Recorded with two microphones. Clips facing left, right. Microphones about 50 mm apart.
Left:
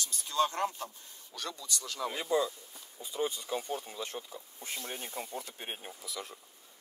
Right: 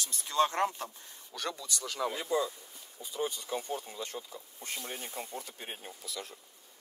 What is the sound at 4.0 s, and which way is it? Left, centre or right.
Speech, left.